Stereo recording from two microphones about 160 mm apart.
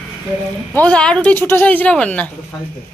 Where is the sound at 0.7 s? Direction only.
5° left (ahead or behind).